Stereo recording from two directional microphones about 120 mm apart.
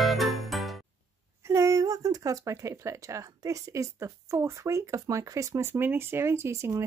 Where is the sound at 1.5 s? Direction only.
25° right (ahead or behind).